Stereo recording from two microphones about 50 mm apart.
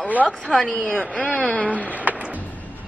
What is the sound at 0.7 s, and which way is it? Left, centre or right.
Speech, left.